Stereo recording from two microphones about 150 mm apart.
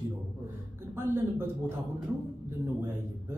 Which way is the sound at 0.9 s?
15° right (ahead or behind).